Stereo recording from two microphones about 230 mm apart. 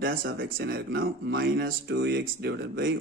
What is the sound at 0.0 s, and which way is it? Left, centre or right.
Speech, right.